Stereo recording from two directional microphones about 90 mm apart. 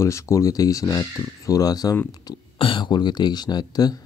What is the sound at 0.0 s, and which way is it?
Speech, 35° left (ahead or behind).